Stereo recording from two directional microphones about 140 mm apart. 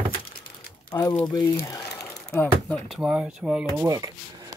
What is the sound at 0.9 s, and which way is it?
Speech, 25° left (ahead or behind).